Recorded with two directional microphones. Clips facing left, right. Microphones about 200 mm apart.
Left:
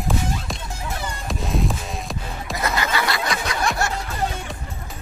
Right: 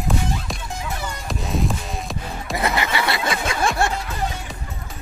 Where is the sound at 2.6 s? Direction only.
20° right (ahead or behind).